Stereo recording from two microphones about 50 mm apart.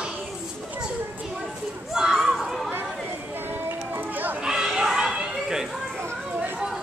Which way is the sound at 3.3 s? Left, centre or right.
Right.